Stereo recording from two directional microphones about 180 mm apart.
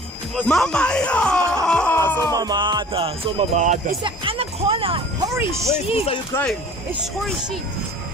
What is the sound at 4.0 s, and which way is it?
Music, 30° right (ahead or behind).